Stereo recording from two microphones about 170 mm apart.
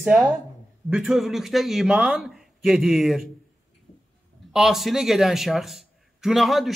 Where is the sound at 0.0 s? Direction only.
5° right (ahead or behind).